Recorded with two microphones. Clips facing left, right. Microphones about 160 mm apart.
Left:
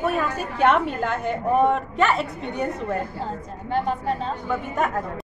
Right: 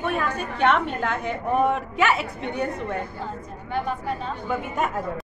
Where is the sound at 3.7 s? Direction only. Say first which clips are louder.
Left 3 dB; 30° left (ahead or behind).